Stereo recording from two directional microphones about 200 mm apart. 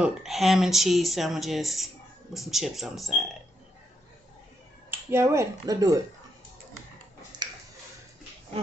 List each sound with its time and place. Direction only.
0.0 s speech: centre (ahead or behind)
5.1 s speech: 15° right (ahead or behind)
7.3 s a sound: 20° right (ahead or behind)